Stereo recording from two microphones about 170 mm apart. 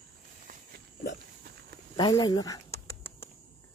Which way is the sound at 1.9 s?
25° left (ahead or behind).